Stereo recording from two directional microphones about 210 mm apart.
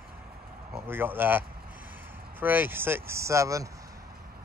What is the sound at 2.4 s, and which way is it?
Speech, 10° right (ahead or behind).